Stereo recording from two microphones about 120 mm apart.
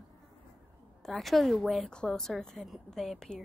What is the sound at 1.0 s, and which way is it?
A woman's voice, centre (ahead or behind).